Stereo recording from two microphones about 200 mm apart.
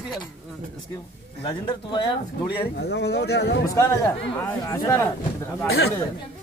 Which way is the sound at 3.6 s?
15° left (ahead or behind).